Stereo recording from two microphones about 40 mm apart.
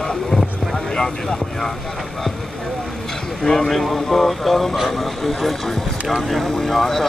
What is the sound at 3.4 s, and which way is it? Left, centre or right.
Speech, centre.